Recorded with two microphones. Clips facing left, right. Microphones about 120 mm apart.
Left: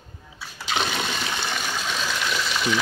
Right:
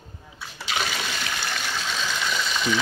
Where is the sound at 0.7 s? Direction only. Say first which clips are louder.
Left 3 dB; 20° left (ahead or behind).